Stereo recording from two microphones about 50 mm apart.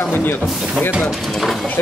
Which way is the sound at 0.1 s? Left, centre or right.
Left.